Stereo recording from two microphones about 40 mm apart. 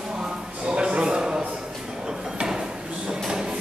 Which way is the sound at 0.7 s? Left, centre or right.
Right.